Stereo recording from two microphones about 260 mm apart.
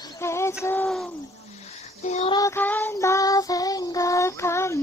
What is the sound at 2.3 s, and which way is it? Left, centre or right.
Child singing, centre.